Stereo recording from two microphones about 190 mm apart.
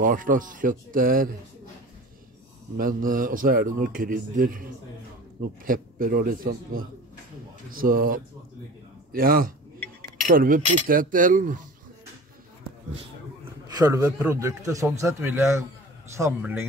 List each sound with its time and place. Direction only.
0.0 s a man's voice: 45° right (ahead or behind)
2.8 s a man's voice: 45° right (ahead or behind)
13.7 s speech: 20° right (ahead or behind)